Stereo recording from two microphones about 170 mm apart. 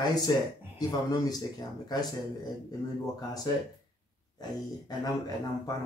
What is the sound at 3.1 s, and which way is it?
Speech, 20° left (ahead or behind).